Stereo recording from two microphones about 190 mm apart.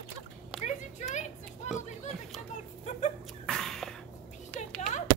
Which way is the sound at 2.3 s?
Centre (ahead or behind).